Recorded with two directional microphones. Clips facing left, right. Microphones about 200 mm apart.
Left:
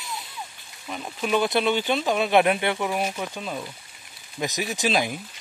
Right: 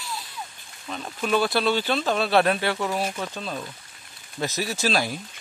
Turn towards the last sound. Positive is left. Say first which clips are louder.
# left 1 dB
turn(degrees=15)  # may be behind; listen again after turning